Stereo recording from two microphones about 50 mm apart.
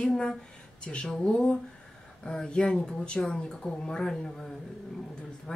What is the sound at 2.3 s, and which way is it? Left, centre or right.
Speech, centre.